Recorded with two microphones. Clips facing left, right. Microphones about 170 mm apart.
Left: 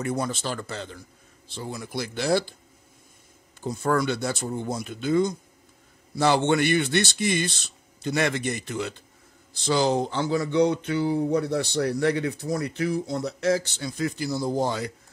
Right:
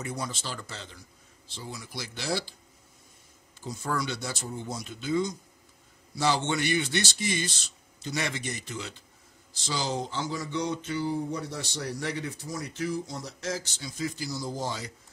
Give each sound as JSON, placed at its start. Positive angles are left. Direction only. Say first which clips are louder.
{"t": 0.0, "sound": "speech", "louder": "left 7 dB", "side_deg": 55}
{"t": 3.6, "sound": "speech", "louder": "left 8 dB", "side_deg": 55}